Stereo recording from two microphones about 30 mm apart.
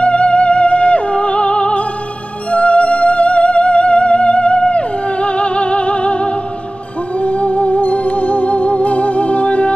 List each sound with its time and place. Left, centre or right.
0.0 s music: left